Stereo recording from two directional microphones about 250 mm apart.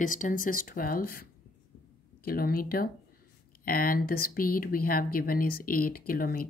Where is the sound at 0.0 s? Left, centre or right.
Left.